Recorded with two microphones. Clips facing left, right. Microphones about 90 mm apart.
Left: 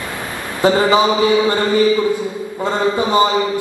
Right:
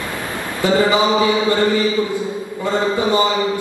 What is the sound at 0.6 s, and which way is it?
Mantra, 20° left (ahead or behind).